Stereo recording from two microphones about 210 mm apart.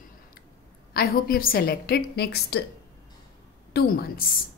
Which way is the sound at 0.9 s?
45° left (ahead or behind).